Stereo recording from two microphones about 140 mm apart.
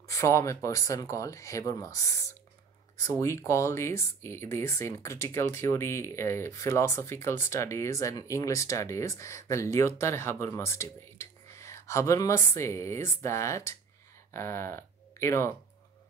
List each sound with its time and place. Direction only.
0.1 s speech: 20° left (ahead or behind)